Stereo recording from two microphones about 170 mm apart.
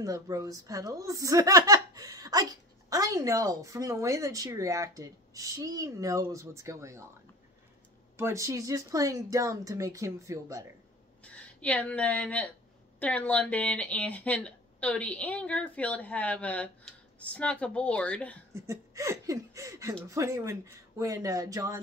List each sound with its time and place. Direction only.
0.0 s speech: 20° right (ahead or behind)
8.2 s speech: 15° right (ahead or behind)
11.2 s speech: 5° left (ahead or behind)
18.5 s speech: 15° right (ahead or behind)